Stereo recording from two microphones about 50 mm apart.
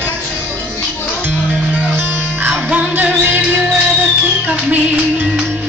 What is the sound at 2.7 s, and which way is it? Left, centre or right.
Music, right.